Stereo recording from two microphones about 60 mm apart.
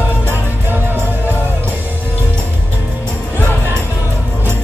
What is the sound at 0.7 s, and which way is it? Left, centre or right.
Music, right.